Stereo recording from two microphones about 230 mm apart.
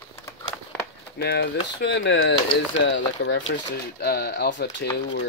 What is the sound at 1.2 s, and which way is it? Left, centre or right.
Speech, left.